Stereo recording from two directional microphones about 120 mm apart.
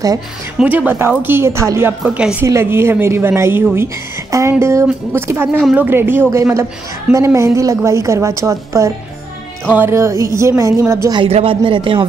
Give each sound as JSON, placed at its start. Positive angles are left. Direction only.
{"t": 0.6, "sound": "a woman's voice", "side_deg": -15}
{"t": 11.2, "sound": "a man's voice", "side_deg": -50}